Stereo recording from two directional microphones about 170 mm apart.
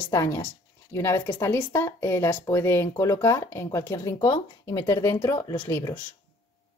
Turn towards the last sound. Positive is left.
turn(degrees=15)  # may be behind; listen again after turning